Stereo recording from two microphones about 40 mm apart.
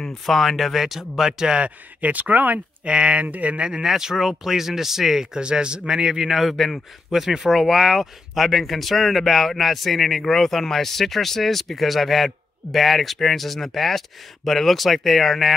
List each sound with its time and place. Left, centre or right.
0.3 s speech: centre
1.4 s speech: centre
2.0 s speech: right
2.8 s speech: right
3.8 s speech: centre
6.3 s speech: centre
7.1 s speech: centre